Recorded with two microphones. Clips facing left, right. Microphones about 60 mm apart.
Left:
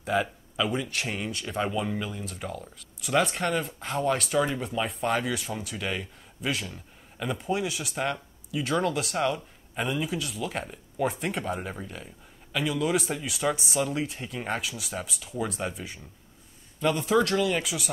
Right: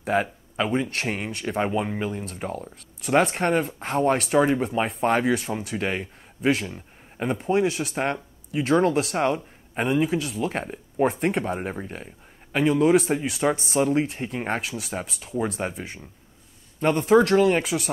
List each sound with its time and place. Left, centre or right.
0.0 s speech: right